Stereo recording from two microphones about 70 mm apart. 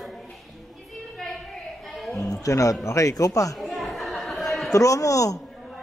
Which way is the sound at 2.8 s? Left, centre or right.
Left.